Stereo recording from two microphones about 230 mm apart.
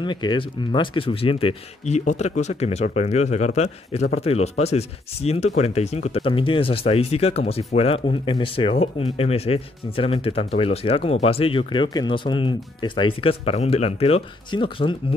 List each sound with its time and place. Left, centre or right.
0.0 s speech: centre